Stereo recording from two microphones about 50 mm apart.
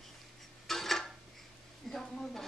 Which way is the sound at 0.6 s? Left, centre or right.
Centre.